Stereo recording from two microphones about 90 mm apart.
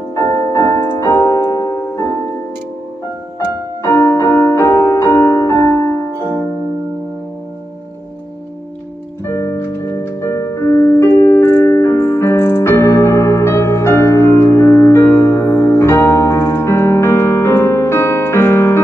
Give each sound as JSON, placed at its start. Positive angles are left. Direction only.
{"t": 0.1, "sound": "music", "side_deg": 35}
{"t": 3.8, "sound": "music", "side_deg": 30}
{"t": 9.2, "sound": "music", "side_deg": 30}
{"t": 11.1, "sound": "keyboard", "side_deg": 30}